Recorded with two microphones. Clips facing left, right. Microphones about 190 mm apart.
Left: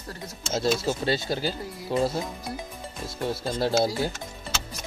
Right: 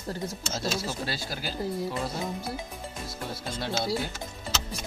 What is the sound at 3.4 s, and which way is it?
Speech, 35° left (ahead or behind).